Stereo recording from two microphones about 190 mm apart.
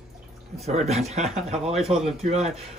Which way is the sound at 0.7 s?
35° right (ahead or behind).